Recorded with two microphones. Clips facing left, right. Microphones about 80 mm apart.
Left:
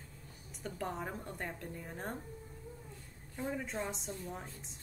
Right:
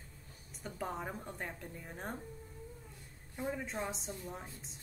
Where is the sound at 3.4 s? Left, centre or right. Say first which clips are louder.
Right 1 dB; centre.